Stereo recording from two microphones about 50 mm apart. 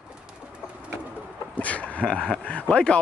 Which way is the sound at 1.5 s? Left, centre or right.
Left.